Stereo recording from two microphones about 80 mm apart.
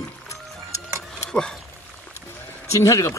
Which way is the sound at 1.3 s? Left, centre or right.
Centre.